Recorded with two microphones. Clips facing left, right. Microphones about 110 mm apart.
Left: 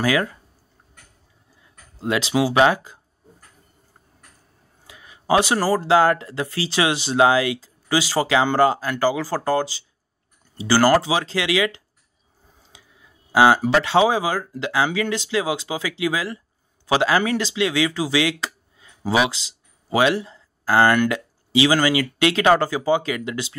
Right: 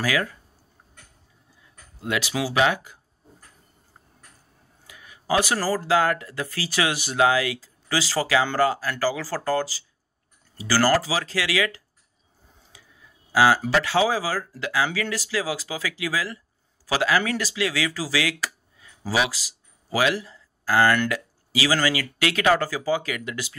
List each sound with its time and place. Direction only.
0.0 s speech: 30° left (ahead or behind)
2.0 s speech: 30° left (ahead or behind)
4.8 s speech: 30° left (ahead or behind)
12.7 s clicking: 20° left (ahead or behind)
13.3 s speech: 25° left (ahead or behind)